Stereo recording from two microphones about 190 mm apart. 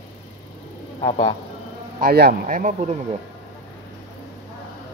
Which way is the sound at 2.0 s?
50° right (ahead or behind).